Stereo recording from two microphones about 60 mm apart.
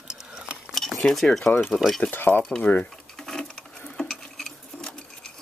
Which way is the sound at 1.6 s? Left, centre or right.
Centre.